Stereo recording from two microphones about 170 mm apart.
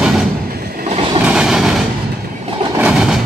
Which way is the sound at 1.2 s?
5° right (ahead or behind).